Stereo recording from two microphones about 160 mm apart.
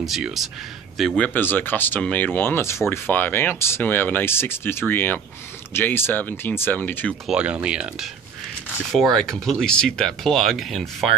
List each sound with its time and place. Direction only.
0.0 s speech: centre (ahead or behind)
7.2 s speech: 5° right (ahead or behind)
9.1 s speech: 5° left (ahead or behind)